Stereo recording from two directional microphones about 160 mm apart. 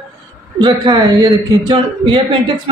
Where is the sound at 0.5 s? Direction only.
25° right (ahead or behind).